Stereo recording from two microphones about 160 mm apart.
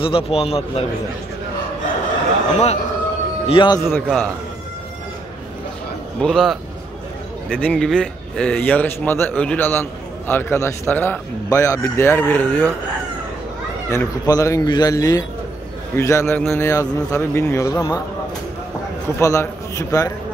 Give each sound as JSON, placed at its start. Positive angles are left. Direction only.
{"t": 0.0, "sound": "a man's voice", "side_deg": 35}
{"t": 2.5, "sound": "a man's voice", "side_deg": 40}
{"t": 3.4, "sound": "speech", "side_deg": 30}
{"t": 3.8, "sound": "a man's voice", "side_deg": 10}
{"t": 6.2, "sound": "a man's voice", "side_deg": 0}
{"t": 7.6, "sound": "a man's voice", "side_deg": 5}
{"t": 13.8, "sound": "a man's voice", "side_deg": 20}
{"t": 19.0, "sound": "speech", "side_deg": 15}